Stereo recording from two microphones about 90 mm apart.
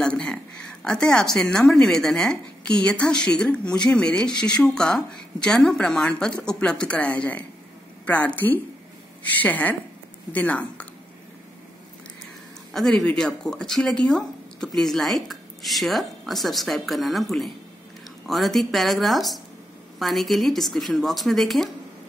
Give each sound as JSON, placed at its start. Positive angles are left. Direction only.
{"t": 0.0, "sound": "a woman's voice", "side_deg": 10}
{"t": 12.7, "sound": "speech", "side_deg": 5}